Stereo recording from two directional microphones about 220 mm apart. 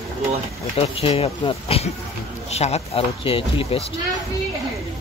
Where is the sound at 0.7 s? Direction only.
25° left (ahead or behind).